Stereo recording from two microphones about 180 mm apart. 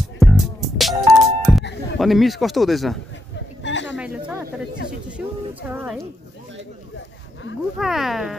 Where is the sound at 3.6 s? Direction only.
85° left.